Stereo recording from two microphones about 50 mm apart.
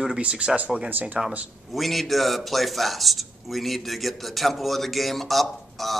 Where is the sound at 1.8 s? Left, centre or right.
Centre.